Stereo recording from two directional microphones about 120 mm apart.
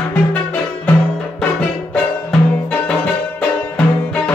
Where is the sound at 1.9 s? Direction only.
10° left (ahead or behind).